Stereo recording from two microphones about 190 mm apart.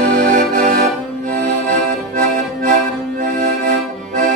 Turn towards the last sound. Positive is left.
turn(degrees=-45)  # may be behind; listen again after turning